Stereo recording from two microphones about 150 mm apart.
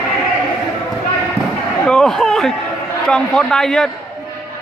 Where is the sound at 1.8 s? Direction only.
5° left (ahead or behind).